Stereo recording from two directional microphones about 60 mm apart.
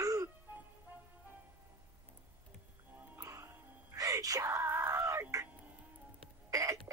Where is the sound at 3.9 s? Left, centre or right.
Right.